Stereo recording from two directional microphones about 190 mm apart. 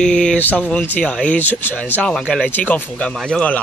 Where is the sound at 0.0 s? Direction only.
5° left (ahead or behind).